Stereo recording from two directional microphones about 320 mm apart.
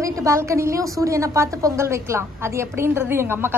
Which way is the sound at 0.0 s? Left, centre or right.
Centre.